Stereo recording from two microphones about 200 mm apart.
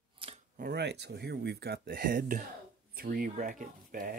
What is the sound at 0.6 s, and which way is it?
Speech, 50° right (ahead or behind).